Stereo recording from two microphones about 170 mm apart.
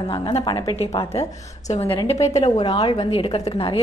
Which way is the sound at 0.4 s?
20° left (ahead or behind).